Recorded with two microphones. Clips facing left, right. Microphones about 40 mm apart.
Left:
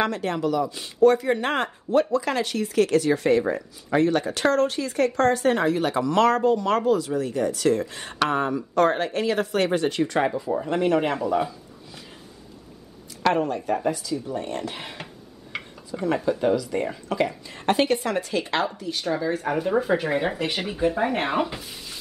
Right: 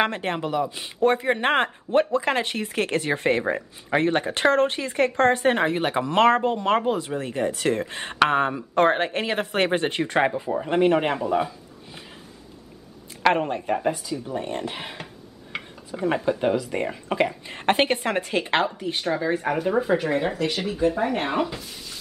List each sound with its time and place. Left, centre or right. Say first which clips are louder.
0.0 s speech: even; right
11.2 s speech: even; centre
13.2 s speech: right 1 dB; right
15.5 s a sound: even; centre
15.9 s speech: even; right
17.5 s speech: left 1 dB; right
19.0 s speech: right 1 dB; right
19.5 s speech: left 1 dB; centre